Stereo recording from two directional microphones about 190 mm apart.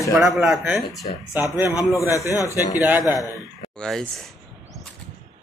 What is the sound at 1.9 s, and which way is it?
A man's voice, 15° left (ahead or behind).